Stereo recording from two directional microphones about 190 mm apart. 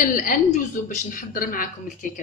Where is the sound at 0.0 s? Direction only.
45° left (ahead or behind).